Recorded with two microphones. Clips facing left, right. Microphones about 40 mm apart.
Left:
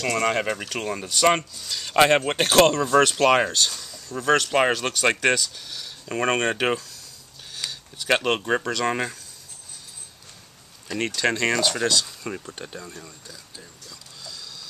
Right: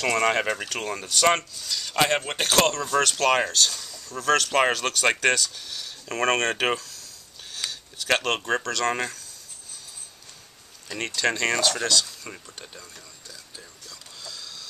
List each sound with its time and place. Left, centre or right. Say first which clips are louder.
0.0 s speech: right 1 dB; centre
1.8 s speech: left 5 dB; left
3.7 s a sound: left 2 dB; centre
4.2 s speech: left 1 dB; centre
7.5 s a sound: even; centre
8.5 s speech: left 1 dB; centre
11.1 s speech: left 1 dB; centre
13.3 s mechanisms: left 1 dB; centre